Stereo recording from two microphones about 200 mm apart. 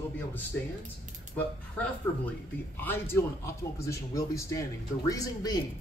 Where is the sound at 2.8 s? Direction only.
10° left (ahead or behind).